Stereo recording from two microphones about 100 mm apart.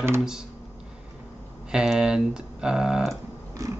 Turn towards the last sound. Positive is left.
turn(degrees=-35)  # may be behind; listen again after turning